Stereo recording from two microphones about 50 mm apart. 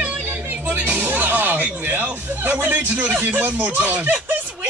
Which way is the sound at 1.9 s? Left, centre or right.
Right.